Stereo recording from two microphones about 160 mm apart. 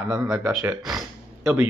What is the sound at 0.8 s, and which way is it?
Speech, centre (ahead or behind).